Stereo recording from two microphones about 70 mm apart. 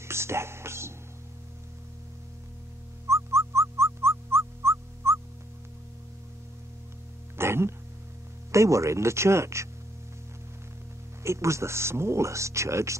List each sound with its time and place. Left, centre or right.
0.0 s music: right
3.1 s music: right
7.3 s music: right
8.5 s speech: right
11.2 s speech: right